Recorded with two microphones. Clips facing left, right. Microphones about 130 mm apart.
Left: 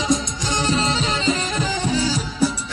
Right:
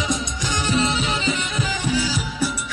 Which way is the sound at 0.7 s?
30° left (ahead or behind).